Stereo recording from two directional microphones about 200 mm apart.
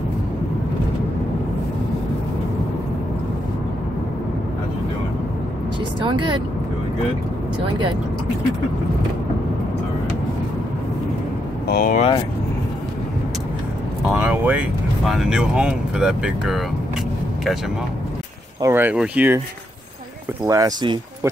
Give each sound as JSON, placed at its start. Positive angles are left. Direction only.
{"t": 11.6, "sound": "speech", "side_deg": 50}
{"t": 14.1, "sound": "speech", "side_deg": -5}
{"t": 18.6, "sound": "speech", "side_deg": -10}
{"t": 20.4, "sound": "speech", "side_deg": -15}